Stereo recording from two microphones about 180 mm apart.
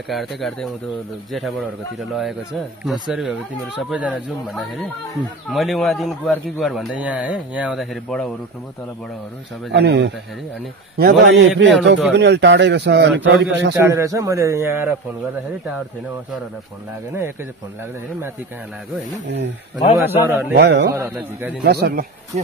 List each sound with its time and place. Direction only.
0.4 s speech: 5° left (ahead or behind)
2.0 s speech: centre (ahead or behind)
9.7 s a man's voice: 75° right (ahead or behind)
13.8 s a man's voice: 15° right (ahead or behind)
20.1 s a man's voice: 10° right (ahead or behind)
20.5 s a man's voice: 70° right (ahead or behind)
20.9 s a man's voice: 15° right (ahead or behind)
21.6 s speech: 60° right (ahead or behind)